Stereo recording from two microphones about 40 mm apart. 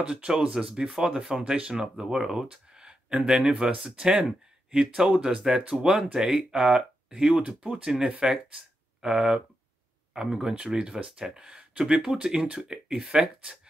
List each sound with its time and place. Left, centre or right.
0.1 s speech: right